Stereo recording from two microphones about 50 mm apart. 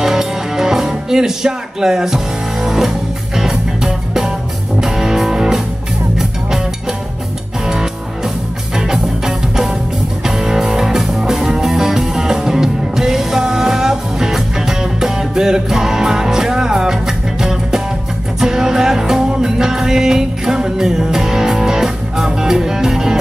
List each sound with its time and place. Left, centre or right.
0.0 s music: centre
7.6 s music: centre